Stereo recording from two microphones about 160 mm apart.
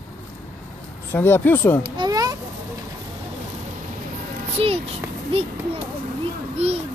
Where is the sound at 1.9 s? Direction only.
25° right (ahead or behind).